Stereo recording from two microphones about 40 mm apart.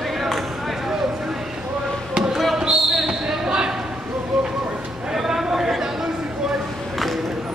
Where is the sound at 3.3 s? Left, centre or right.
Centre.